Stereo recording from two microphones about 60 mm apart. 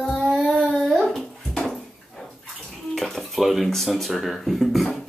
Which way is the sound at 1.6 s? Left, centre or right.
Centre.